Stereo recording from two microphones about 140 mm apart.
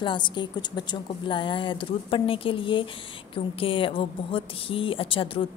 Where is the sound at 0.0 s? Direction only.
35° left (ahead or behind).